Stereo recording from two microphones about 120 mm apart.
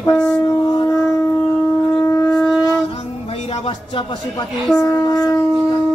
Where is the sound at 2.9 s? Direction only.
55° left (ahead or behind).